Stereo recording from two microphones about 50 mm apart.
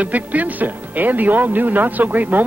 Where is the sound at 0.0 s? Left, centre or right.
Right.